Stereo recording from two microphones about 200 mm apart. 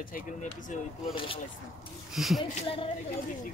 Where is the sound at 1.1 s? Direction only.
25° left (ahead or behind).